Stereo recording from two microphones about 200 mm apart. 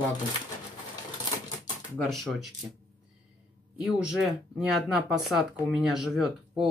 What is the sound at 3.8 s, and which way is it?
Speech, 5° right (ahead or behind).